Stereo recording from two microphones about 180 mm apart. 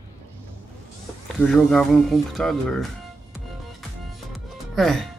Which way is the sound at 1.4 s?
Centre (ahead or behind).